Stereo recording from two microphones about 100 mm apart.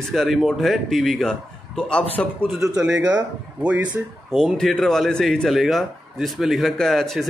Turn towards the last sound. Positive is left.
turn(degrees=5)  # may be behind; listen again after turning